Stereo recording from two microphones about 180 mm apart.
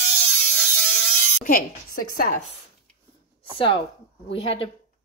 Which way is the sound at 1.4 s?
55° left (ahead or behind).